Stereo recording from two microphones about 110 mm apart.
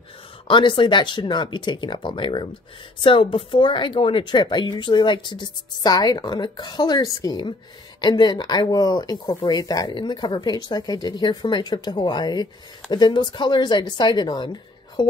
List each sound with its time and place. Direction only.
0.5 s speech: 45° left (ahead or behind)